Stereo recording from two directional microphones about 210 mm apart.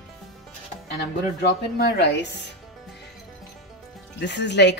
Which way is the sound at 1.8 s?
55° left (ahead or behind).